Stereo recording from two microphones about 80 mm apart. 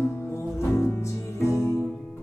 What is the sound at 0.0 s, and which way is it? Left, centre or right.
Music, left.